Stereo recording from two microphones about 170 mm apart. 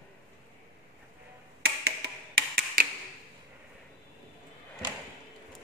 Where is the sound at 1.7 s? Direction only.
70° right (ahead or behind).